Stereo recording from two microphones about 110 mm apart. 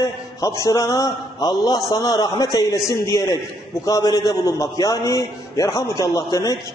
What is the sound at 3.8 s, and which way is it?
A man's voice, 35° left (ahead or behind).